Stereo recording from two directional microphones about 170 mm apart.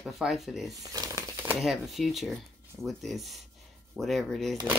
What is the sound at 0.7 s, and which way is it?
Crumpling, 20° right (ahead or behind).